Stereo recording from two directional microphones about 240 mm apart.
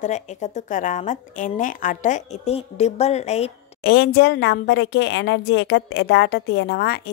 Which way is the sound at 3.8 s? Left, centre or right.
Left.